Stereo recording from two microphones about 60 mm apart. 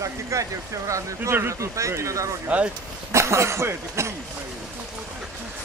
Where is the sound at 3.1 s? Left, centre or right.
Right.